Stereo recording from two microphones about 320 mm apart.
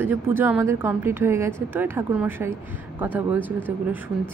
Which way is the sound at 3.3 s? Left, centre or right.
Centre.